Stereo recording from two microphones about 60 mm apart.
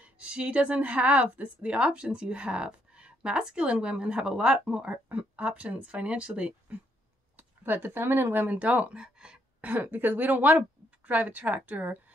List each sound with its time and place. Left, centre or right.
0.0 s a woman's voice: right
7.3 s speech: right
8.5 s a sound: centre
9.7 s a woman's voice: right